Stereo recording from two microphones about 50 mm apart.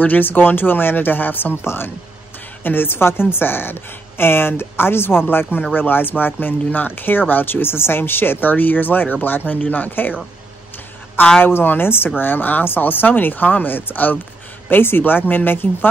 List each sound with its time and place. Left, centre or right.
0.0 s speech: left
11.4 s speech: left